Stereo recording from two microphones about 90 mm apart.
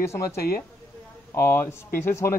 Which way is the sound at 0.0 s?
30° left (ahead or behind).